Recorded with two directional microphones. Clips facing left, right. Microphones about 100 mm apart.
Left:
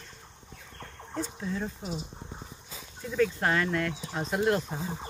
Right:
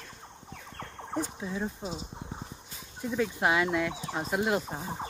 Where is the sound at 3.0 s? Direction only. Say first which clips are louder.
Left 1 dB; 15° right (ahead or behind).